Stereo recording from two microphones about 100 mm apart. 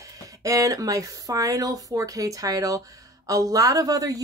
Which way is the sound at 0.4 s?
35° right (ahead or behind).